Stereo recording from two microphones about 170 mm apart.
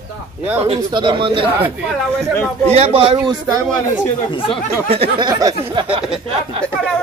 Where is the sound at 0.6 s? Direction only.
30° right (ahead or behind).